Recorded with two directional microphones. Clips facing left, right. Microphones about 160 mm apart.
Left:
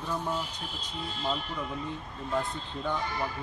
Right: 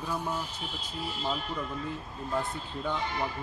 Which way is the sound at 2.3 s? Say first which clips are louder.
Left 1 dB; 15° right (ahead or behind).